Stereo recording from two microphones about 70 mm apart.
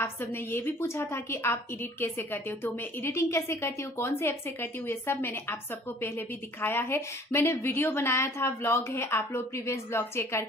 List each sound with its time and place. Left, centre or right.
0.0 s a woman's voice: left